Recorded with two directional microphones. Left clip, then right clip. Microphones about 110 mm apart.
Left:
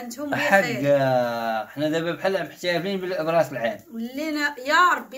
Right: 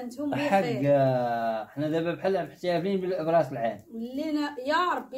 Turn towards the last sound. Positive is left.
turn(degrees=-20)  # may be behind; listen again after turning